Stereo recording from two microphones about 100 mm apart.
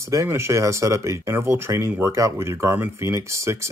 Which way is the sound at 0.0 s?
30° right (ahead or behind).